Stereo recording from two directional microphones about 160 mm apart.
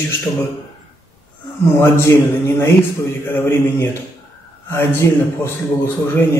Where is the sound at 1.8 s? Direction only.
15° left (ahead or behind).